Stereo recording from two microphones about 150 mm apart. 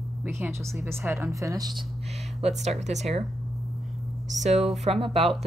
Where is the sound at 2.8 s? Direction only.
50° right (ahead or behind).